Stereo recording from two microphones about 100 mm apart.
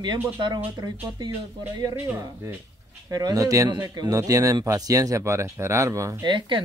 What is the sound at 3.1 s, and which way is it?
Speech, 40° right (ahead or behind).